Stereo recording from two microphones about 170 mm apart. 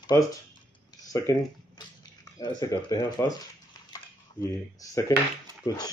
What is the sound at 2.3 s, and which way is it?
Speech, 20° left (ahead or behind).